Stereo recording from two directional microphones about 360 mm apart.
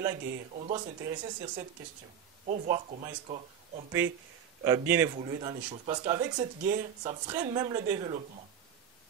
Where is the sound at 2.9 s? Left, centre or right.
Centre.